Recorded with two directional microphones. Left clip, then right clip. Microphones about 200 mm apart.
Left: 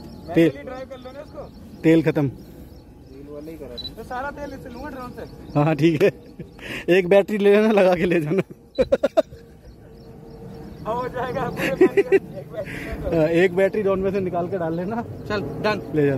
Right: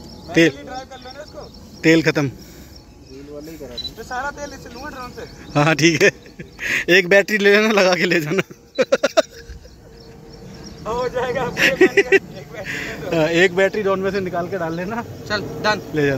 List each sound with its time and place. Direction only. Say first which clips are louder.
0.3 s speech: right 3 dB; centre (ahead or behind)
1.8 s speech: right 3 dB; centre (ahead or behind)
4.1 s a man's voice: right 3 dB; 5° left (ahead or behind)
10.9 s speech: right 4 dB; 50° left (ahead or behind)
11.5 s speech: right 4 dB; centre (ahead or behind)
15.2 s speech: right 4 dB; 60° left (ahead or behind)
15.9 s speech: right 1 dB; centre (ahead or behind)